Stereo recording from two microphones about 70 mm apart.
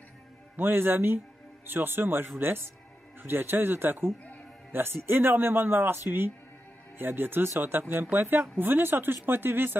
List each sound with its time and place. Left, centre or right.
0.6 s speech: right